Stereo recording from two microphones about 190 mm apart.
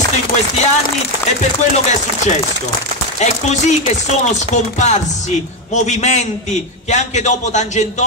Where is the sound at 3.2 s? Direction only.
35° left (ahead or behind).